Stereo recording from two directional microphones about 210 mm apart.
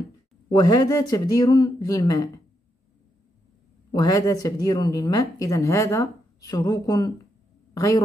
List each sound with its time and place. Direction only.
0.5 s a woman's voice: 20° left (ahead or behind)
3.9 s a woman's voice: 15° left (ahead or behind)